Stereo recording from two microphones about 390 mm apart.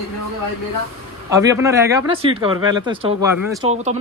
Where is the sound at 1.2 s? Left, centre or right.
Centre.